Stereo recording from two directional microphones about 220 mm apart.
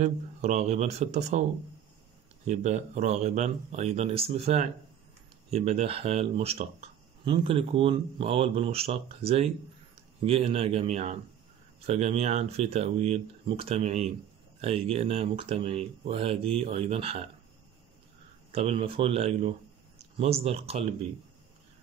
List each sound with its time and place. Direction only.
0.0 s speech: 30° right (ahead or behind)
2.4 s speech: 30° right (ahead or behind)
18.5 s speech: 25° right (ahead or behind)